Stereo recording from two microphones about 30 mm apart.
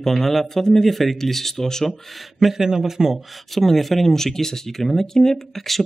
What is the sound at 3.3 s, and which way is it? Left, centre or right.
Speech, centre.